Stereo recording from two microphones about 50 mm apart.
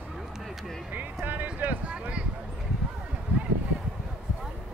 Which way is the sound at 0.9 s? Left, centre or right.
Right.